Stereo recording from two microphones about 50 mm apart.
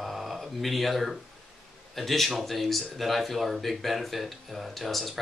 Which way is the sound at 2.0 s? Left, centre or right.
Centre.